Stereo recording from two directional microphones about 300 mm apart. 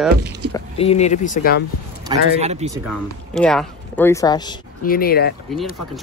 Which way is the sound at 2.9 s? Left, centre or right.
Centre.